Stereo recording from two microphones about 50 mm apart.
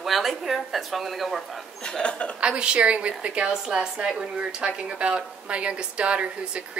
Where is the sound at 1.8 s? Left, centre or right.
Centre.